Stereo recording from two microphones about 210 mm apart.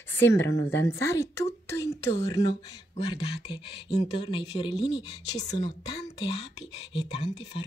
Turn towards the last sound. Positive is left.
turn(degrees=25)  # may be behind; listen again after turning